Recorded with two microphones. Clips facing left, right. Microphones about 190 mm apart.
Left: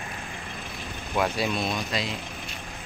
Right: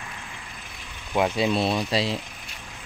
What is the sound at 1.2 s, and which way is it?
Speech, 20° right (ahead or behind).